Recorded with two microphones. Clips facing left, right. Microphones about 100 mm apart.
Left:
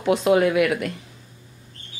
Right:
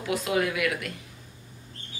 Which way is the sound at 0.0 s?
30° left (ahead or behind).